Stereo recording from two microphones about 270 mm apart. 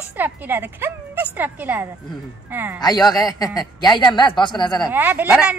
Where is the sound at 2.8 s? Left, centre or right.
Centre.